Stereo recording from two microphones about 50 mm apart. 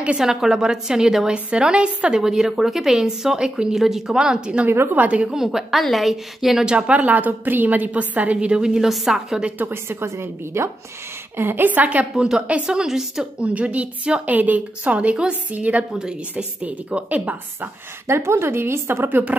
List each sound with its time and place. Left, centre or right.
0.2 s a woman's voice: centre
4.6 s a woman's voice: right
4.9 s a woman's voice: right
5.3 s a woman's voice: centre
6.6 s a woman's voice: centre
9.6 s a woman's voice: right
11.3 s a woman's voice: right
11.7 s a woman's voice: right
12.7 s a woman's voice: centre
13.4 s a woman's voice: right
15.9 s a woman's voice: centre
16.6 s a woman's voice: right
18.0 s a woman's voice: right
19.0 s a woman's voice: right